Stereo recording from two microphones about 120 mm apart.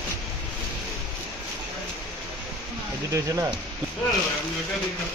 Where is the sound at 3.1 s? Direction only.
25° right (ahead or behind).